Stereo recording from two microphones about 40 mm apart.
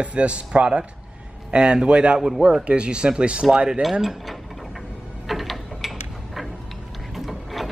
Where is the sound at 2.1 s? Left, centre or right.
Centre.